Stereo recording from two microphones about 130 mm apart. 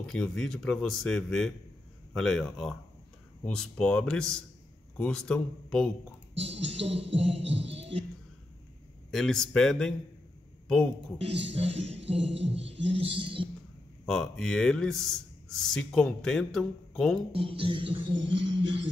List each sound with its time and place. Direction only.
0.0 s speech: 5° left (ahead or behind)
6.8 s music: 50° right (ahead or behind)
9.1 s speech: 5° left (ahead or behind)
11.1 s music: 50° right (ahead or behind)
14.0 s speech: 5° left (ahead or behind)
17.3 s music: 45° right (ahead or behind)